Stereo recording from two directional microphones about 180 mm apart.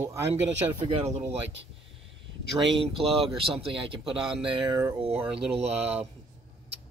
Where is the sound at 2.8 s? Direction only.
30° right (ahead or behind).